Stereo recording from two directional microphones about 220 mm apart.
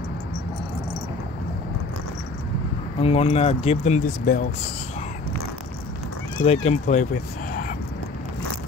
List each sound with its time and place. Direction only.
3.0 s speech: 25° left (ahead or behind)
6.4 s speech: 30° left (ahead or behind)